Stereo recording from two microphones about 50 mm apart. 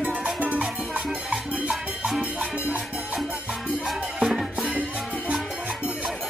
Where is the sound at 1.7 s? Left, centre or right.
Centre.